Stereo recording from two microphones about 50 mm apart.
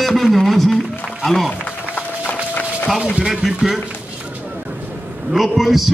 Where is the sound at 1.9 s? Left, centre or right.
Left.